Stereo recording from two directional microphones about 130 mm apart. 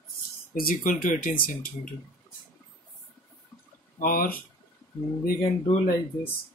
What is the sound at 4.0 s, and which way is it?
Speech, 90° left.